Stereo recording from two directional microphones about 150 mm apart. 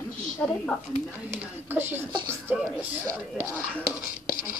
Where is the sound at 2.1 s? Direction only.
15° right (ahead or behind).